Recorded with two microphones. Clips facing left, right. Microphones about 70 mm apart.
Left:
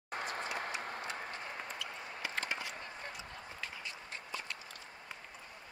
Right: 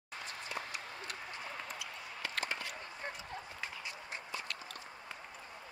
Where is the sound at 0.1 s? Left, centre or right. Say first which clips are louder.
Left 5 dB; left.